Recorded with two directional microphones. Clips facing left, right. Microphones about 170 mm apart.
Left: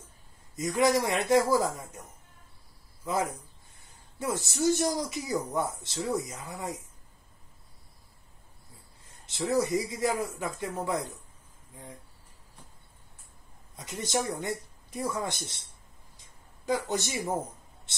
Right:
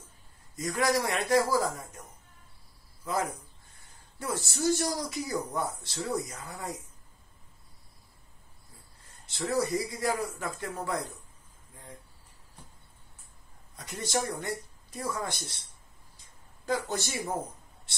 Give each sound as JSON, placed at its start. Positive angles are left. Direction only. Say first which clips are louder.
{"t": 0.6, "sound": "speech", "louder": "left 3 dB", "side_deg": 20}
{"t": 4.2, "sound": "speech", "louder": "left 2 dB", "side_deg": 20}
{"t": 9.2, "sound": "speech", "louder": "left 2 dB", "side_deg": 20}
{"t": 13.7, "sound": "speech", "louder": "left 1 dB", "side_deg": 20}
{"t": 16.6, "sound": "a man's voice", "louder": "left 2 dB", "side_deg": 15}